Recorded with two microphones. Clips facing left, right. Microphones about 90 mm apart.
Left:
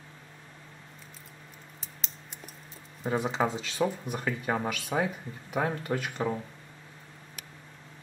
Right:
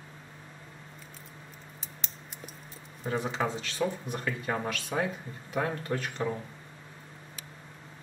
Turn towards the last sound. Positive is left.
turn(degrees=10)  # may be behind; listen again after turning